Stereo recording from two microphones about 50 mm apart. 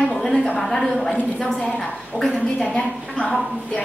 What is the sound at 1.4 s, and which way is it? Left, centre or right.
A woman's voice, centre.